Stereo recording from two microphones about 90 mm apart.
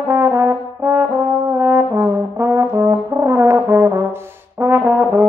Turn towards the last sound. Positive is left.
turn(degrees=-25)  # may be behind; listen again after turning